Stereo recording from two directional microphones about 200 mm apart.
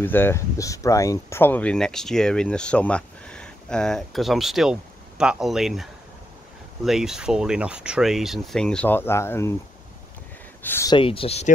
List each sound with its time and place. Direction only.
0.0 s speech: 10° left (ahead or behind)
10.6 s speech: 15° left (ahead or behind); by 11.5 s 30° left (ahead or behind)